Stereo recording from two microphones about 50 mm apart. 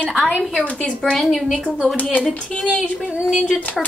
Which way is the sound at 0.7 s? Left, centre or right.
Left.